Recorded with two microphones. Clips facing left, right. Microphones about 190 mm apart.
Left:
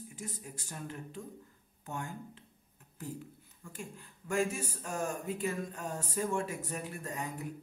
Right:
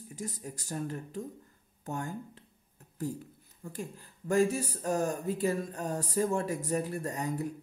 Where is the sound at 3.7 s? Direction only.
35° right (ahead or behind).